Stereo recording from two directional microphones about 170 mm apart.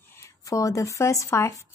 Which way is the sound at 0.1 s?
15° left (ahead or behind).